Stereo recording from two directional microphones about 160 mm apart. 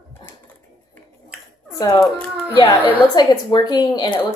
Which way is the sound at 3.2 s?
25° left (ahead or behind).